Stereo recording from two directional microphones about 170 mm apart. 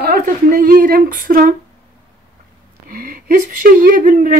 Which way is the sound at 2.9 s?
55° right (ahead or behind).